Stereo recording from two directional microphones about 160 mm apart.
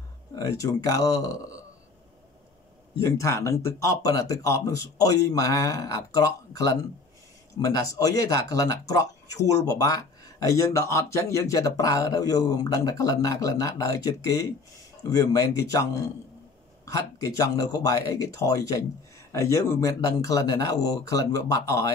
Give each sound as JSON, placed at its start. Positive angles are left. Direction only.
{"t": 0.4, "sound": "speech", "side_deg": 20}
{"t": 3.0, "sound": "speech", "side_deg": 20}